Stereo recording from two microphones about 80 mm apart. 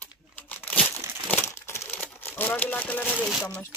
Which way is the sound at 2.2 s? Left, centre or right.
Left.